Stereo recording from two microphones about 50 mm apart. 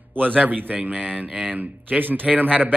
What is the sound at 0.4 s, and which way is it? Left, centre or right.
A man's voice, right.